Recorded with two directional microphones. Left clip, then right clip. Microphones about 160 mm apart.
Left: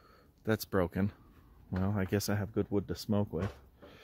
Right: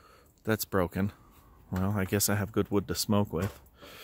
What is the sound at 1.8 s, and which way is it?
Speech, 15° right (ahead or behind).